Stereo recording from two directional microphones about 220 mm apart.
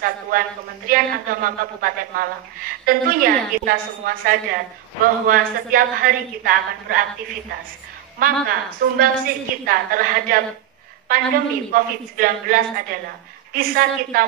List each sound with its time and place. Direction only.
0.0 s a woman's voice: 40° right (ahead or behind)
8.2 s a woman's voice: 40° right (ahead or behind)